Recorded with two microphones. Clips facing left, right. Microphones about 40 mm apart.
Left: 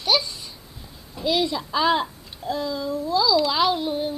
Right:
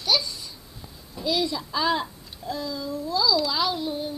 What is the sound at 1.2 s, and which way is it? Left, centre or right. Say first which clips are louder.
A child's voice: left 3 dB; left.